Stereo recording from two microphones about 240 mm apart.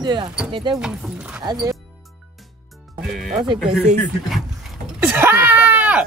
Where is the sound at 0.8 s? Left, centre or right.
Centre.